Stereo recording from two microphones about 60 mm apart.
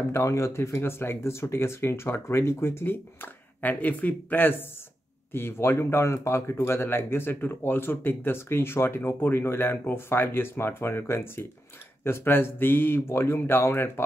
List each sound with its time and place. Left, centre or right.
0.1 s speech: left